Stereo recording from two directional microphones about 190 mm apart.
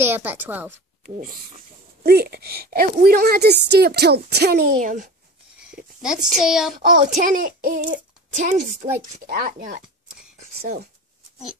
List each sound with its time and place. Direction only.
0.0 s a woman's voice: 10° right (ahead or behind)
2.0 s a woman's voice: 55° right (ahead or behind)
6.0 s a child's voice: 5° right (ahead or behind)
6.7 s speech: 45° right (ahead or behind)